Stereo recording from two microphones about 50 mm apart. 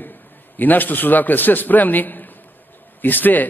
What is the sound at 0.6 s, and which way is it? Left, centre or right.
A man's voice, left.